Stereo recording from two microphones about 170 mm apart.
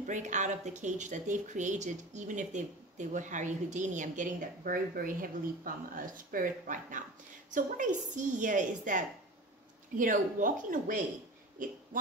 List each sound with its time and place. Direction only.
0.0 s a woman's voice: 45° right (ahead or behind)